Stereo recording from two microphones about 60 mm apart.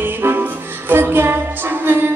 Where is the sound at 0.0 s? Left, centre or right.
Right.